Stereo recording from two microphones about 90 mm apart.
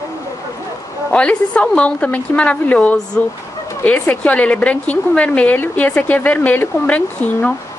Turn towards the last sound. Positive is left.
turn(degrees=15)  # may be behind; listen again after turning